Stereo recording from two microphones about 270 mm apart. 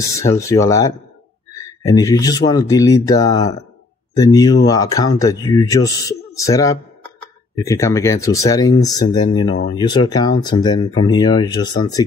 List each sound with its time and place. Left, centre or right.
0.2 s speech: centre